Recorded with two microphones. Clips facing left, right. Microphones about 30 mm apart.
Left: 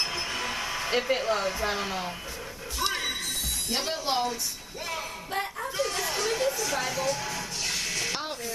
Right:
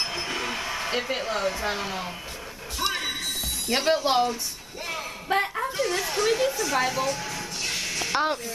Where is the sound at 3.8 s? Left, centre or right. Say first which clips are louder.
Right 7 dB; right.